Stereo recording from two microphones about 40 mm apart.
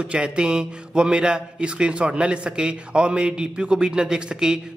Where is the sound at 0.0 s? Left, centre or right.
Right.